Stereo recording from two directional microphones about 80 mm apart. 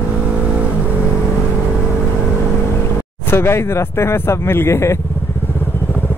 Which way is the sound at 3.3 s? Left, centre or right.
Left.